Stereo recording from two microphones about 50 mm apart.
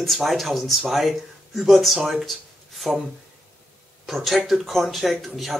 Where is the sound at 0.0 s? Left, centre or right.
Centre.